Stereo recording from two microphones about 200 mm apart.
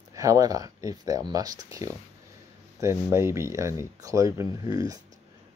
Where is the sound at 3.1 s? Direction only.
15° right (ahead or behind).